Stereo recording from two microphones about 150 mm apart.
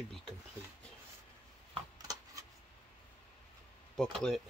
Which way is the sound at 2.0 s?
25° right (ahead or behind).